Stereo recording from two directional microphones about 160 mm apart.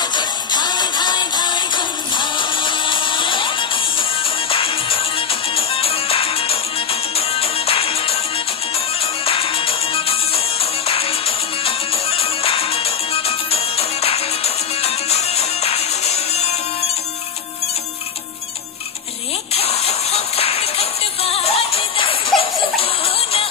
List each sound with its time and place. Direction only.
0.0 s music: 25° left (ahead or behind); by 16.9 s 40° left (ahead or behind)
19.5 s music: 40° left (ahead or behind)